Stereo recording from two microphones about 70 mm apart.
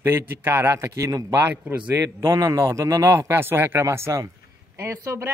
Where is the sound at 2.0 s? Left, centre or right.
Right.